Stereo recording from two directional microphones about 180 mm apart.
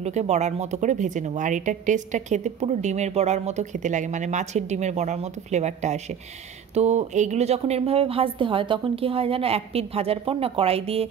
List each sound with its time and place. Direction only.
0.0 s a woman's voice: 40° right (ahead or behind)